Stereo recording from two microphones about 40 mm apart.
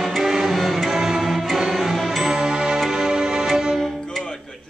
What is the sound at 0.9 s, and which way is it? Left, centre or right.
Music, centre.